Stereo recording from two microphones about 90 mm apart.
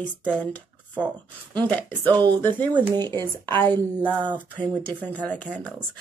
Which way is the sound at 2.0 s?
50° right (ahead or behind).